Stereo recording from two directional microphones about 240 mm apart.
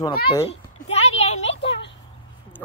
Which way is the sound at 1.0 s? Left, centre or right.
Left.